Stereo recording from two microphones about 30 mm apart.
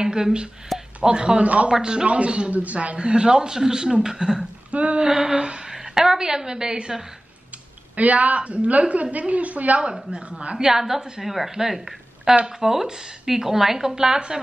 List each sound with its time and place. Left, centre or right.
0.0 s a sound: centre
0.7 s a sound: centre
1.0 s speech: right
1.4 s a woman's voice: right
1.7 s speech: right
2.0 s a man's voice: right
2.5 s a woman's voice: right
3.0 s speech: right
4.6 s speech: right
5.0 s a woman's voice: right
7.9 s a woman's voice: right
10.7 s speech: centre
11.7 s a sound: centre
12.4 s speech: centre